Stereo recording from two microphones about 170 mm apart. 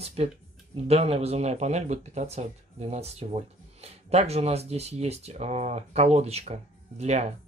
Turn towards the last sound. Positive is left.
turn(degrees=-40)  # may be behind; listen again after turning